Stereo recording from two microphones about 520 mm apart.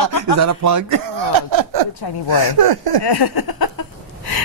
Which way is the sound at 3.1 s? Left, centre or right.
Left.